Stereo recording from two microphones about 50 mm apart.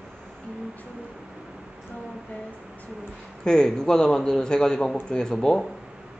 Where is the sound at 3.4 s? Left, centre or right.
Centre.